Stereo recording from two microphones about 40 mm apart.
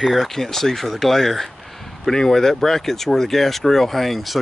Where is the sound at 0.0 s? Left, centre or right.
Centre.